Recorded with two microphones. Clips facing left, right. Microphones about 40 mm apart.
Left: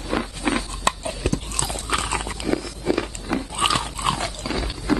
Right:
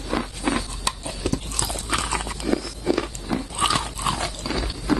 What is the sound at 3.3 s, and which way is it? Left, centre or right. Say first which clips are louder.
Dog: left 1 dB; left.